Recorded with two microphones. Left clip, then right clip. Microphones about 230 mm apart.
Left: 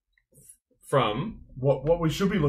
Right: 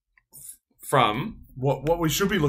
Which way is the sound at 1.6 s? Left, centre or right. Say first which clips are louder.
Even; right.